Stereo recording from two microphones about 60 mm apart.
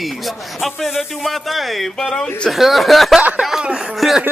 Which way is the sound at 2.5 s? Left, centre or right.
Centre.